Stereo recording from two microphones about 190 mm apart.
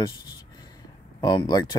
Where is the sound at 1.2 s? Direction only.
20° left (ahead or behind).